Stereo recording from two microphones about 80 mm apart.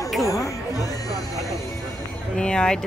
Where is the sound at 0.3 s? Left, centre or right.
Left.